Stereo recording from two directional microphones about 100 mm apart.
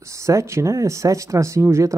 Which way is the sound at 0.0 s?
30° right (ahead or behind).